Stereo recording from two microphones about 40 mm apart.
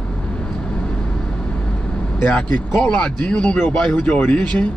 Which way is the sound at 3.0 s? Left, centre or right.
Left.